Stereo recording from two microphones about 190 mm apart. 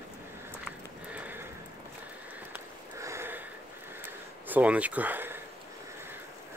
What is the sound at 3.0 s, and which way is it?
Sniff, 15° right (ahead or behind).